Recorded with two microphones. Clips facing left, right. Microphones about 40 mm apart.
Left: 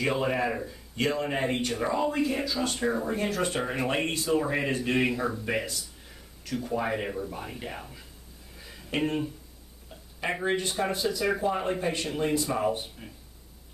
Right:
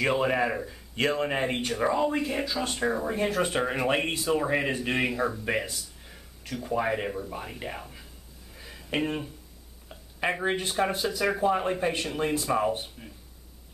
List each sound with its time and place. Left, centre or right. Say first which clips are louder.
0.0 s speech: right 2 dB; centre
0.9 s speech: right 2 dB; right
8.5 s a sound: even; centre
10.4 s speech: left 1 dB; centre
13.0 s speech: even; centre